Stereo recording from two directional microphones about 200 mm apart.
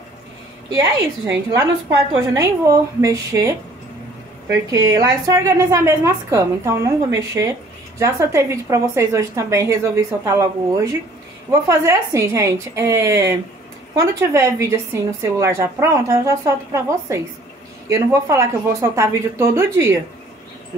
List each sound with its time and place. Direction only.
0.7 s a woman's voice: 20° right (ahead or behind)
8.0 s a woman's voice: 15° right (ahead or behind)